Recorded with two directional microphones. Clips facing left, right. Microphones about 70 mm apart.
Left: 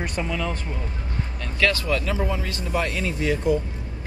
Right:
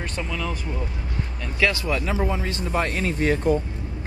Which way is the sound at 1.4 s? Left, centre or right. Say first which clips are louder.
Even; centre.